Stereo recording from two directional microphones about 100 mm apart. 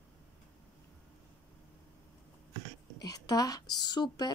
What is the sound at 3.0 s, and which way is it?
A woman's voice, 40° left (ahead or behind).